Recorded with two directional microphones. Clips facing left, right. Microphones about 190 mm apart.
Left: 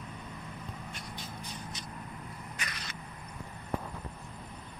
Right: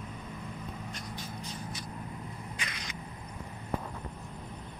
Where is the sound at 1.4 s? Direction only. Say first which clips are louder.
Right 2 dB; 20° left (ahead or behind).